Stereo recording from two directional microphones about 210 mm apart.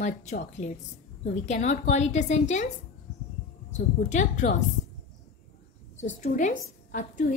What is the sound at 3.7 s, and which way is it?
Speech, 35° left (ahead or behind).